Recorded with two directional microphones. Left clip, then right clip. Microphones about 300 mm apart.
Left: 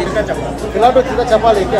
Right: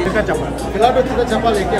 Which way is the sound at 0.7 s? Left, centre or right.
Centre.